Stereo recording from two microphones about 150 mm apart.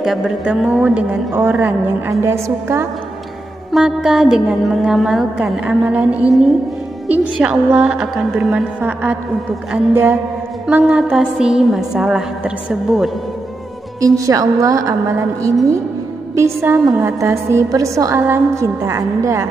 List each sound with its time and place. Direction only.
0.0 s a woman's voice: 5° right (ahead or behind)
3.7 s a woman's voice: 5° right (ahead or behind)
10.7 s a woman's voice: 5° right (ahead or behind)
14.0 s a woman's voice: 20° right (ahead or behind)